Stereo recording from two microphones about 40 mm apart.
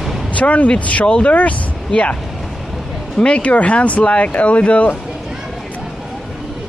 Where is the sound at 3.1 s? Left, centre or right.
Left.